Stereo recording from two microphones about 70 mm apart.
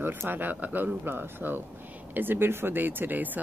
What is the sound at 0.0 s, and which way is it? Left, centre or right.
Speech, right.